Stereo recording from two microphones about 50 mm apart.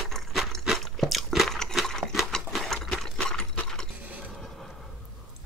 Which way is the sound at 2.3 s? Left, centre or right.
Centre.